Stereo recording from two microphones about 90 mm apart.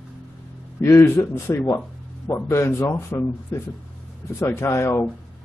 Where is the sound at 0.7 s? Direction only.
30° left (ahead or behind).